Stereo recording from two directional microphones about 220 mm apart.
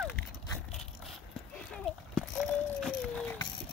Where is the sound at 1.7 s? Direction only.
Centre (ahead or behind).